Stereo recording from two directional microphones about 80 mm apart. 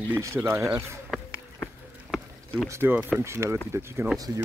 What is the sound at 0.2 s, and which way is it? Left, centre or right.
Speech, right.